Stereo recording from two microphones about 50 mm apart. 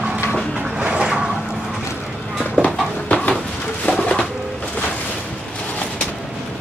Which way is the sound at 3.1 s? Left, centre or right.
Left.